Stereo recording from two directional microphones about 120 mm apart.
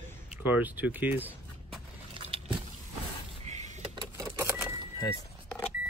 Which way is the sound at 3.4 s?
75° right (ahead or behind).